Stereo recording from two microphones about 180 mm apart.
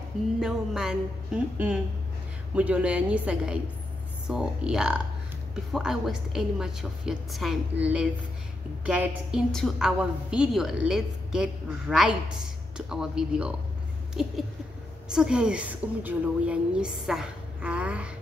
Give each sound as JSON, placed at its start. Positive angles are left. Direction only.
{"t": 0.4, "sound": "a woman's voice", "side_deg": -5}